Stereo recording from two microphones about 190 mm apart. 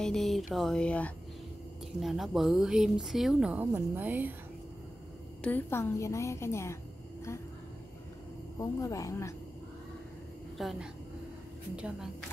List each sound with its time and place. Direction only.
0.0 s a woman's voice: centre (ahead or behind)
5.4 s a woman's voice: 10° left (ahead or behind)
8.5 s a woman's voice: 20° left (ahead or behind)
10.6 s a woman's voice: centre (ahead or behind)